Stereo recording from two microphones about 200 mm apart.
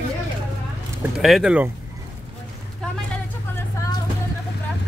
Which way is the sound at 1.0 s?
Centre (ahead or behind).